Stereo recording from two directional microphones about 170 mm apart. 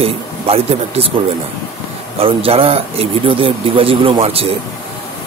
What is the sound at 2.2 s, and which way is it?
Speech, 35° right (ahead or behind).